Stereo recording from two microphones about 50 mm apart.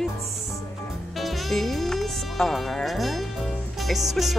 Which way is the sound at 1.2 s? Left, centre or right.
Centre.